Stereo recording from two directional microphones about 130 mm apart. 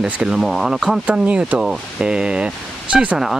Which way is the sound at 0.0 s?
5° right (ahead or behind).